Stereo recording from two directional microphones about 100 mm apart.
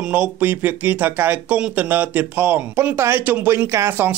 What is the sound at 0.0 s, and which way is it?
Speech, 10° right (ahead or behind).